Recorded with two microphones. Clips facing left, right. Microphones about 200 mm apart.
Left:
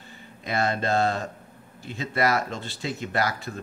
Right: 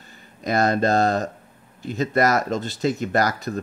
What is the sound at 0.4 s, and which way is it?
Speech, 40° right (ahead or behind).